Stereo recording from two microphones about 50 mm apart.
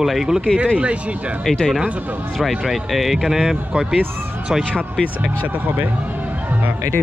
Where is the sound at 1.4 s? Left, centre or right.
Centre.